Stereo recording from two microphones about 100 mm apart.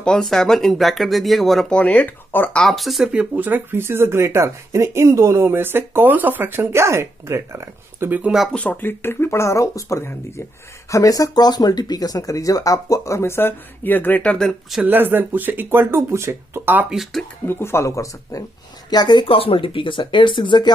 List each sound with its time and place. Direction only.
0.0 s speech: 5° left (ahead or behind)
1.8 s speech: 15° left (ahead or behind)
2.6 s speech: centre (ahead or behind)
3.1 s speech: 15° right (ahead or behind)
8.1 s speech: 15° right (ahead or behind)
8.5 s speech: 15° left (ahead or behind)
14.9 s speech: 20° right (ahead or behind)
16.9 s speech: centre (ahead or behind)
17.5 s speech: 25° left (ahead or behind)
18.9 s speech: 45° left (ahead or behind)